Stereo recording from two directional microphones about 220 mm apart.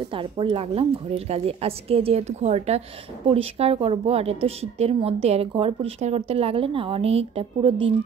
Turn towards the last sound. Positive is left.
turn(degrees=-25)  # may be behind; listen again after turning